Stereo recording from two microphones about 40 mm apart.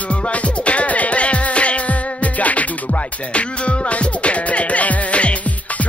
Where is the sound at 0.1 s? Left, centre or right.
Left.